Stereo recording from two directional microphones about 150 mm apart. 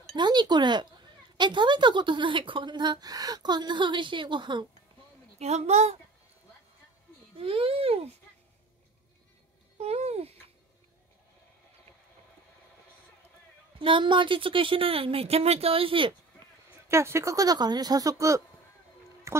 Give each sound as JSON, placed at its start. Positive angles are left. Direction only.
{"t": 0.1, "sound": "speech", "side_deg": -30}
{"t": 5.4, "sound": "a woman's voice", "side_deg": -45}
{"t": 7.3, "sound": "speech", "side_deg": -40}
{"t": 9.8, "sound": "a woman's voice", "side_deg": -45}
{"t": 13.7, "sound": "speech", "side_deg": -35}
{"t": 16.9, "sound": "speech", "side_deg": -15}